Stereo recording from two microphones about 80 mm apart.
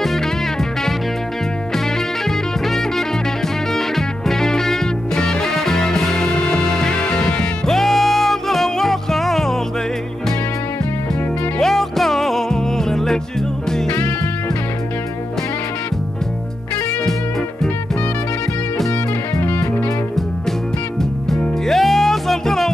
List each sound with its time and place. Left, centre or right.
2.2 s music: centre
11.6 s music: centre
13.8 s music: centre
21.0 s music: centre